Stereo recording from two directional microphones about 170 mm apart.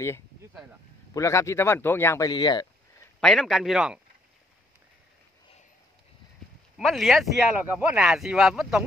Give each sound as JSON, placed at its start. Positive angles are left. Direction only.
{"t": 1.1, "sound": "speech", "side_deg": 15}
{"t": 3.2, "sound": "speech", "side_deg": 5}
{"t": 6.8, "sound": "speech", "side_deg": 0}